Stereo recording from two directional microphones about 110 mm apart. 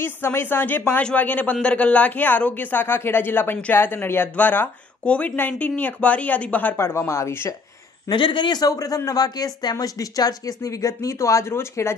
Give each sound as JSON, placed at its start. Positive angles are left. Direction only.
{"t": 0.0, "sound": "speech", "side_deg": 20}
{"t": 6.8, "sound": "speech", "side_deg": 25}
{"t": 8.1, "sound": "speech", "side_deg": 45}